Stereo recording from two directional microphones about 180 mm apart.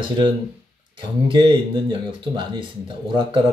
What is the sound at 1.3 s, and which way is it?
Speech, 30° right (ahead or behind).